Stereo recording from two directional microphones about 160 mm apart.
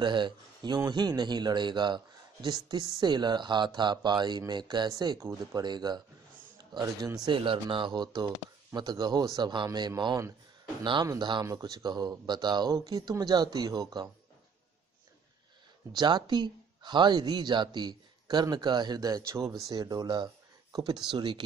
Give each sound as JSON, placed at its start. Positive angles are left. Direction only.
{"t": 0.0, "sound": "speech", "side_deg": -30}
{"t": 15.9, "sound": "speech", "side_deg": -25}